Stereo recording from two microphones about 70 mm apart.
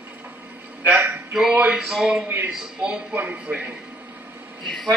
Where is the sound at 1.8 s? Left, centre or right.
Centre.